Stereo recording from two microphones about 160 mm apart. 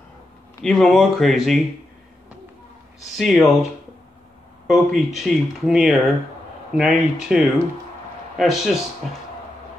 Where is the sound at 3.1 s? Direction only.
Centre (ahead or behind).